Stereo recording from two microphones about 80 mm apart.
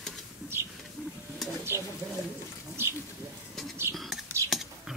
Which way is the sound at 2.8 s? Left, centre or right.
Right.